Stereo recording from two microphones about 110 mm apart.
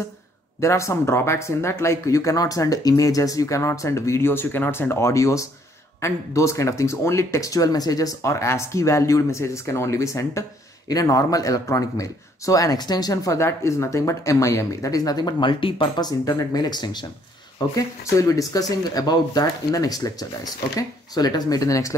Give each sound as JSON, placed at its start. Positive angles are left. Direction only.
{"t": 0.6, "sound": "speech", "side_deg": 25}
{"t": 16.3, "sound": "speech", "side_deg": 35}